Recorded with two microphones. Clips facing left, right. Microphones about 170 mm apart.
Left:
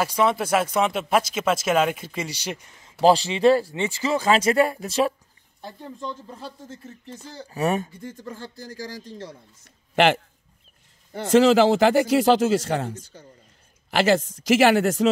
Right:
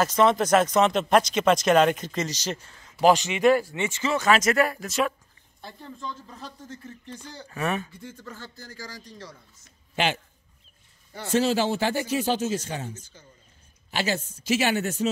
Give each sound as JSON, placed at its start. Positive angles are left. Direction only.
{"t": 0.0, "sound": "speech", "side_deg": 10}
{"t": 3.0, "sound": "speech", "side_deg": 30}
{"t": 5.6, "sound": "speech", "side_deg": 15}
{"t": 7.3, "sound": "speech", "side_deg": 35}
{"t": 11.2, "sound": "a man's voice", "side_deg": 90}